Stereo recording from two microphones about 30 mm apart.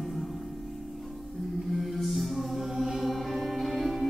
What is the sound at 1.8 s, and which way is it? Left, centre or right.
Music, centre.